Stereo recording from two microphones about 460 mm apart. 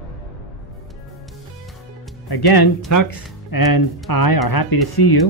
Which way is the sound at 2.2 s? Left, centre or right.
Left.